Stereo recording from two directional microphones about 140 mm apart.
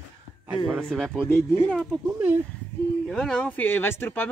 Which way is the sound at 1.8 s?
Centre (ahead or behind).